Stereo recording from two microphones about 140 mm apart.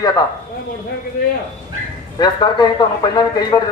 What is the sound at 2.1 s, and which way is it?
Speech, 30° left (ahead or behind).